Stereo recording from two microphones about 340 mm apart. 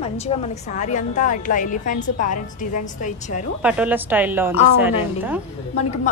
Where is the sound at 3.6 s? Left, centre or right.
Centre.